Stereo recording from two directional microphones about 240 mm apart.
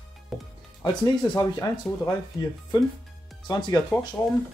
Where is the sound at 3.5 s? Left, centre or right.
Centre.